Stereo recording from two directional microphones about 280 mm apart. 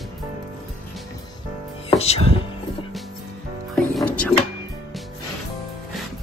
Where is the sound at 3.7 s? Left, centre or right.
Centre.